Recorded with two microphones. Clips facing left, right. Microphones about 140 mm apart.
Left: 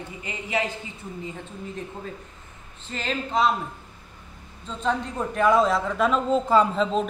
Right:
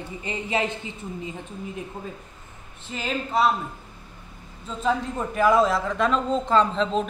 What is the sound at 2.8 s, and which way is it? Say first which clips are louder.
Speech: even; 5° right (ahead or behind).